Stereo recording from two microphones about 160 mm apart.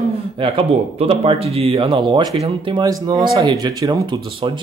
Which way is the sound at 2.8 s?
25° right (ahead or behind).